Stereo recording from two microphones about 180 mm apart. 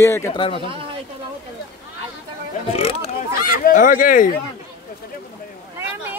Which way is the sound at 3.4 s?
50° left (ahead or behind).